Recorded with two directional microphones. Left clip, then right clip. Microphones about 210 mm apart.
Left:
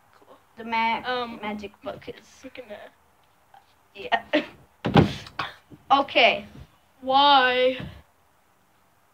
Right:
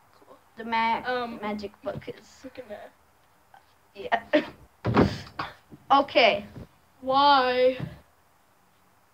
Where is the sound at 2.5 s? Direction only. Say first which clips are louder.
Left 1 dB; centre (ahead or behind).